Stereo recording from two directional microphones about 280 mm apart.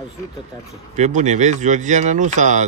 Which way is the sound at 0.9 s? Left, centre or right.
Right.